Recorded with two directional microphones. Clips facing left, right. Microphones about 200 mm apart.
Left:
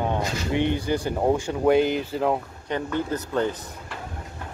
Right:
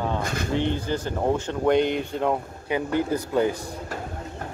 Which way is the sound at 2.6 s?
10° right (ahead or behind).